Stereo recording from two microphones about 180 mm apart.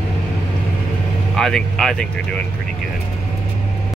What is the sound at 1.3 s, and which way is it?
Speech, centre (ahead or behind).